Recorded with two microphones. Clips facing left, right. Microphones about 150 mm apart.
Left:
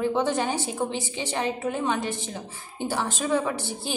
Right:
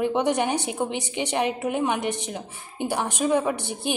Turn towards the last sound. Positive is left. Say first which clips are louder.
# right 2 dB
turn(degrees=-15)  # may be behind; listen again after turning